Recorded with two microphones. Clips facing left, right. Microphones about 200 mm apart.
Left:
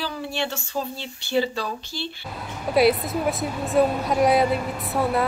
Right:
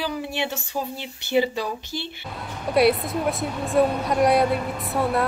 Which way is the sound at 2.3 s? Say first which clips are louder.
Even; centre (ahead or behind).